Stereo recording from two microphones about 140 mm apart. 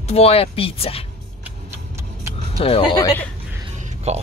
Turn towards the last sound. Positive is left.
turn(degrees=-50)  # may be behind; listen again after turning